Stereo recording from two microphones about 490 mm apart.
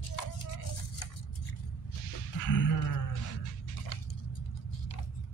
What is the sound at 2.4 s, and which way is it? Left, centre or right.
Music, left.